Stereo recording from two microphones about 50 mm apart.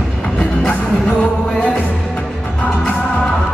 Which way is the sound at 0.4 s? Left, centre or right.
Centre.